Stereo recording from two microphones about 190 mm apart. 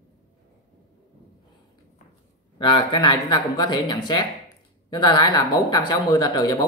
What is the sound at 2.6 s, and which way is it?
Speech, 25° left (ahead or behind).